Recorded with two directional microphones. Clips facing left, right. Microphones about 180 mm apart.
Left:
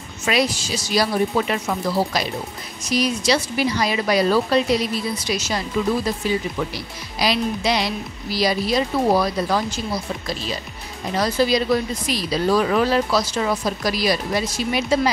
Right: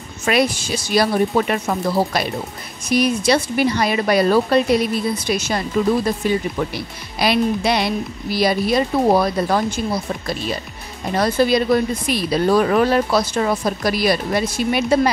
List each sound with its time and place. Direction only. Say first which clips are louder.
0.3 s speech: right 3 dB; 55° right (ahead or behind)